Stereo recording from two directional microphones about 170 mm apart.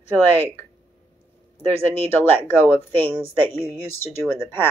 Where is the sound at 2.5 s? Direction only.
10° left (ahead or behind).